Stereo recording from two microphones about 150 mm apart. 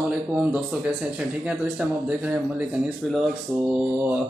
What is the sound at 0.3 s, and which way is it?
Speech, 5° right (ahead or behind).